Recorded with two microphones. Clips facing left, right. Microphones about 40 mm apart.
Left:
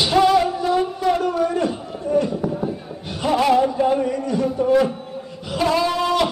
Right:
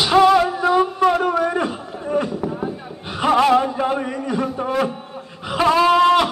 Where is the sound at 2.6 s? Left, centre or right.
Right.